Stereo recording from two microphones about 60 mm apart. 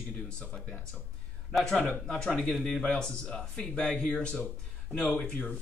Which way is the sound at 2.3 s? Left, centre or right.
Centre.